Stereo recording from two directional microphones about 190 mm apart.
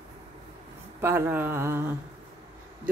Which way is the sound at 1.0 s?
10° right (ahead or behind).